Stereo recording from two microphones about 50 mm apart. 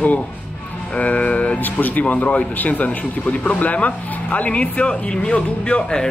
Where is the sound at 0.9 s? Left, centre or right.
Left.